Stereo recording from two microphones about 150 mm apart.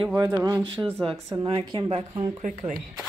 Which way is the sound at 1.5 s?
35° right (ahead or behind).